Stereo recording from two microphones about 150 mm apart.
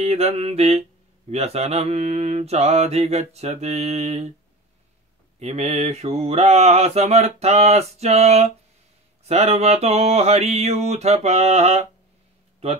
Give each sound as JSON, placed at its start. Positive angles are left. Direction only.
{"t": 0.0, "sound": "mantra", "side_deg": -45}
{"t": 5.4, "sound": "mantra", "side_deg": -45}
{"t": 12.6, "sound": "speech", "side_deg": -40}